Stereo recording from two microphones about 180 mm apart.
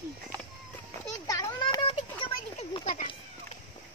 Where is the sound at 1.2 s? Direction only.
20° left (ahead or behind).